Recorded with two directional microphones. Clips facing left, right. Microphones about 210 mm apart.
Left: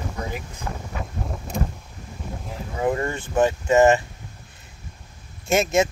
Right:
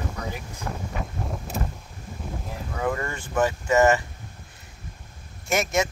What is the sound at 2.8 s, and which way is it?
Speech, 25° left (ahead or behind).